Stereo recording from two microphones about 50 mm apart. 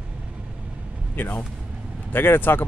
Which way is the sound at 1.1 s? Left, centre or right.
Left.